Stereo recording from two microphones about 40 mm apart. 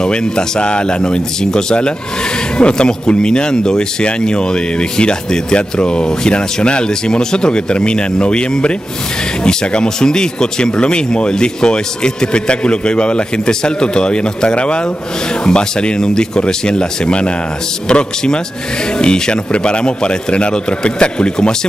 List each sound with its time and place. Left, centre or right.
0.0 s speech: centre